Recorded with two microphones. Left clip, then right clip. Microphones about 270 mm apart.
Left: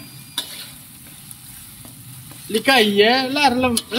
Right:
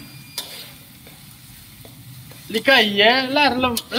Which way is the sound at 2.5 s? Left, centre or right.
Centre.